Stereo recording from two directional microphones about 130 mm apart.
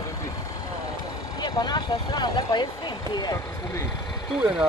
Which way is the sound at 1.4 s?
35° left (ahead or behind).